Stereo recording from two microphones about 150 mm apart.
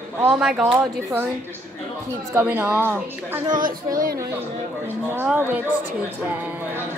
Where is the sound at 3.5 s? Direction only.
65° right (ahead or behind).